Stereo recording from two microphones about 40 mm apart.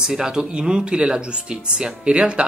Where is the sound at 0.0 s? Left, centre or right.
Centre.